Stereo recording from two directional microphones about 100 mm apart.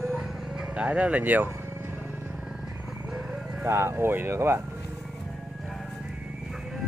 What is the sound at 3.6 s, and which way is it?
Speech, 25° right (ahead or behind).